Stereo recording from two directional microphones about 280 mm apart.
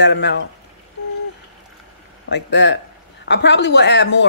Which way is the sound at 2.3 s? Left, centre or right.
Left.